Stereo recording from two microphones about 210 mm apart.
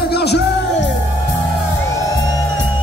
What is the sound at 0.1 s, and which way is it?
Music, 50° left (ahead or behind).